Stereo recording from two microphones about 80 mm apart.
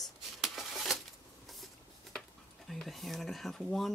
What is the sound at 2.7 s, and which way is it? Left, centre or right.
Speech, centre.